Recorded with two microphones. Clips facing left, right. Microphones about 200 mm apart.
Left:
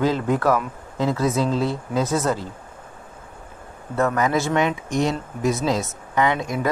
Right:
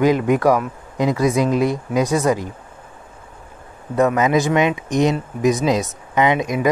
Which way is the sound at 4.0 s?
15° right (ahead or behind).